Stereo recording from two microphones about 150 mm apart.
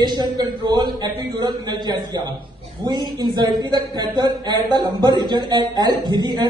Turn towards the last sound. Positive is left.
turn(degrees=-30)  # may be behind; listen again after turning